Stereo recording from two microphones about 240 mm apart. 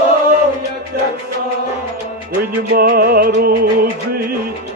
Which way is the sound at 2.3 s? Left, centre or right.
Right.